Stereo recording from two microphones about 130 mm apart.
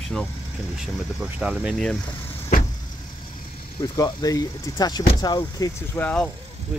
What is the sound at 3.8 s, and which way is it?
Speech, 30° left (ahead or behind).